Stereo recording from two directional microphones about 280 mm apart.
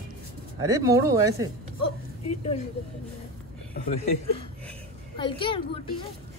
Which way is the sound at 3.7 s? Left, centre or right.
Left.